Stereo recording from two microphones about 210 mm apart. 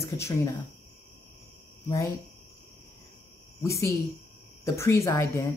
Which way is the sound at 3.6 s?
15° left (ahead or behind).